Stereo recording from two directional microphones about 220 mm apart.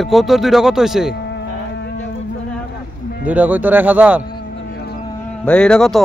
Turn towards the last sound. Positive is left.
turn(degrees=5)  # may be behind; listen again after turning